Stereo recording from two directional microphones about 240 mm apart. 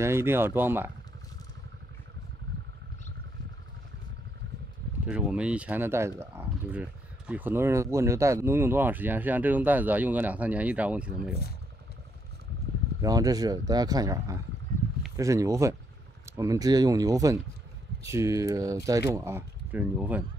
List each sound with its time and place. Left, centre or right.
0.0 s speech: centre
5.0 s speech: centre
13.0 s speech: centre